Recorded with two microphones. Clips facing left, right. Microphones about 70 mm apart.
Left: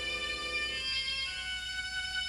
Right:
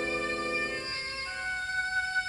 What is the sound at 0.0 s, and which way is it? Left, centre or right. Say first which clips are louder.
Music: right 8 dB; right.